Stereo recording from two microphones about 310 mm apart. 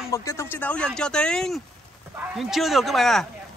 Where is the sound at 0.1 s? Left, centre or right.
Centre.